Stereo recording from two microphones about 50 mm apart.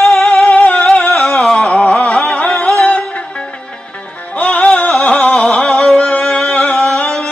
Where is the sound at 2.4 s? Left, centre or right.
Left.